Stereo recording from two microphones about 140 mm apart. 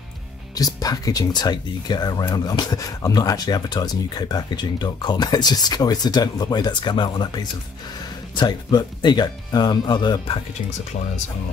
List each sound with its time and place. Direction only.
0.6 s speech: 25° left (ahead or behind)